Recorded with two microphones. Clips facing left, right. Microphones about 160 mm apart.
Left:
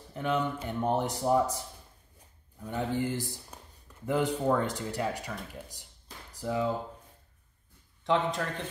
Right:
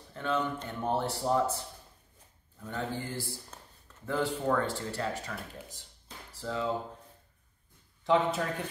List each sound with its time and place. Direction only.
0.1 s speech: 15° left (ahead or behind)
2.6 s speech: 15° left (ahead or behind)
8.0 s a man's voice: 5° right (ahead or behind)